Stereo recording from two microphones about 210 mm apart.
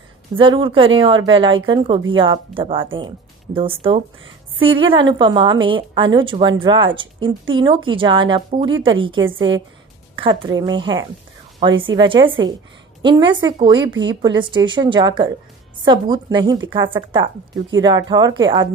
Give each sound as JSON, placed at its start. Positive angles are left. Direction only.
{"t": 0.4, "sound": "a woman's voice", "side_deg": -25}
{"t": 9.2, "sound": "a woman's voice", "side_deg": -65}
{"t": 10.1, "sound": "a woman's voice", "side_deg": -25}